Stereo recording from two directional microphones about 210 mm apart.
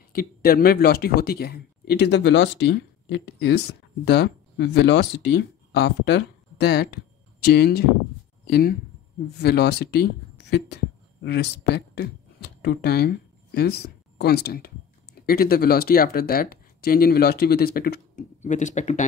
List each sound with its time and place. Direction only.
0.1 s speech: 45° left (ahead or behind)